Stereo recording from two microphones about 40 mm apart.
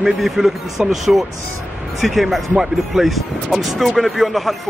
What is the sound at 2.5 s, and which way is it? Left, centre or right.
Speech, centre.